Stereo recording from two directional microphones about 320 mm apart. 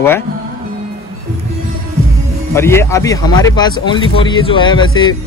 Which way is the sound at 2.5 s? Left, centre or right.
Centre.